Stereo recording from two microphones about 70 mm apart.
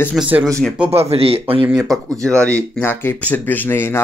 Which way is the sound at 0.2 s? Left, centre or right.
Centre.